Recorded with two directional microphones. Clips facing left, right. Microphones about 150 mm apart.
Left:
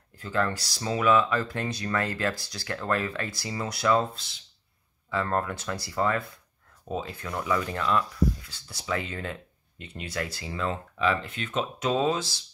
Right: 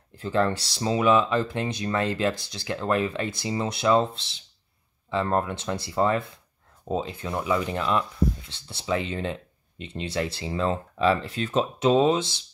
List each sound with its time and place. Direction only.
0.1 s speech: 25° right (ahead or behind)